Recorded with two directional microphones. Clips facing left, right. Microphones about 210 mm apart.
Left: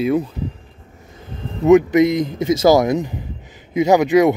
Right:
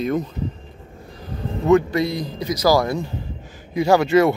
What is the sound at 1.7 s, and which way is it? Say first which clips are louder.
A man's voice: left 5 dB; 20° left (ahead or behind).